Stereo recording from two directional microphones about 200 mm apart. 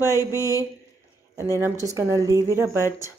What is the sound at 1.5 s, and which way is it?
Speech, 15° right (ahead or behind).